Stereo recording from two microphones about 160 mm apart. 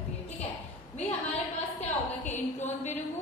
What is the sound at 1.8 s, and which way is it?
Speech, 45° left (ahead or behind).